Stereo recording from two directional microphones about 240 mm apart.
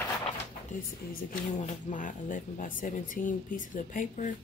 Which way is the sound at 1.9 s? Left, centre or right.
Left.